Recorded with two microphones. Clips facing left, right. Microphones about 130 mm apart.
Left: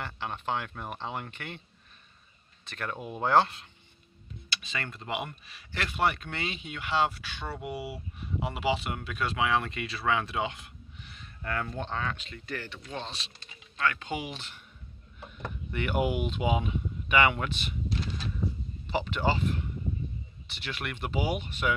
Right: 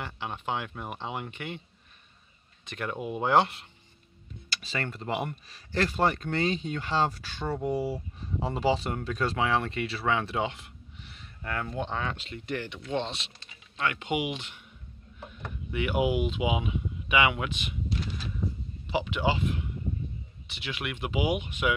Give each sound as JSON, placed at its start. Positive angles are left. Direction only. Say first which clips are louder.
{"t": 0.0, "sound": "speech", "louder": "even", "side_deg": -15}
{"t": 2.6, "sound": "speech", "louder": "right 3 dB", "side_deg": -15}
{"t": 3.3, "sound": "speech", "louder": "even", "side_deg": -20}
{"t": 4.5, "sound": "speech", "louder": "right 3 dB", "side_deg": -30}
{"t": 7.6, "sound": "speech", "louder": "right 9 dB", "side_deg": 10}
{"t": 7.9, "sound": "speech", "louder": "right 3 dB", "side_deg": -35}
{"t": 15.7, "sound": "speech", "louder": "right 2 dB", "side_deg": -5}
{"t": 18.9, "sound": "speech", "louder": "right 1 dB", "side_deg": -10}